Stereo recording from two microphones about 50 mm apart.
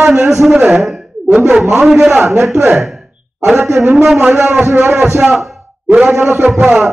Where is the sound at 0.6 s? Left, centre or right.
Centre.